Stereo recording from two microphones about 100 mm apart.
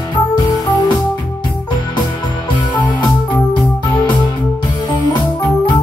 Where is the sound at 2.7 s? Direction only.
50° left (ahead or behind).